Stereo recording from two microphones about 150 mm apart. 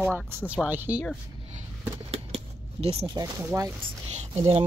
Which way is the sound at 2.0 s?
45° right (ahead or behind).